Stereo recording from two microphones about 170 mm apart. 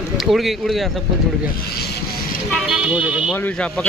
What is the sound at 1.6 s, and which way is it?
Vehicle, 70° left (ahead or behind).